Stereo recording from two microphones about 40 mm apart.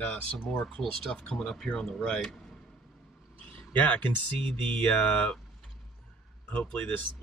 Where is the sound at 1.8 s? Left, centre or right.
Centre.